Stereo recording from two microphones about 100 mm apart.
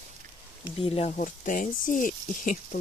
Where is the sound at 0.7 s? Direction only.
75° left (ahead or behind).